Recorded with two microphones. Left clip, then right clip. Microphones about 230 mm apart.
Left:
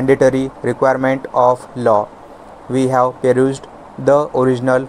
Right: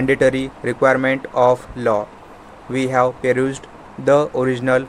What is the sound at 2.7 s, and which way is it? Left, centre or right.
Speech, centre.